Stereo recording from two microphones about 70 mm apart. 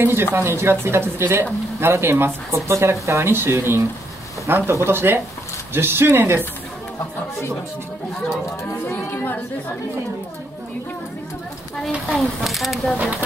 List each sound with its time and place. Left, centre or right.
0.0 s speech: right
8.8 s speech: left
12.4 s speech: centre
12.9 s speech: centre